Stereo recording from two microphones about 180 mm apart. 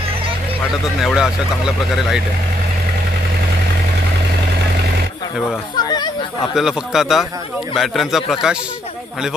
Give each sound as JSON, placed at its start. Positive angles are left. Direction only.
{"t": 1.0, "sound": "speech", "side_deg": -5}
{"t": 5.8, "sound": "speech", "side_deg": 25}
{"t": 6.5, "sound": "speech", "side_deg": 0}